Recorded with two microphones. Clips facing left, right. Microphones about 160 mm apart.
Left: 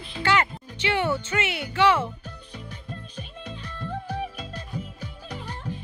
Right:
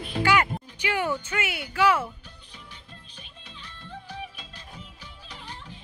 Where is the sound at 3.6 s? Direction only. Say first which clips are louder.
Left 8 dB; 45° left (ahead or behind).